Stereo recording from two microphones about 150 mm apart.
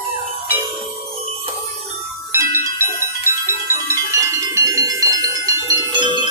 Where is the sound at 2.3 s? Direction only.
20° right (ahead or behind).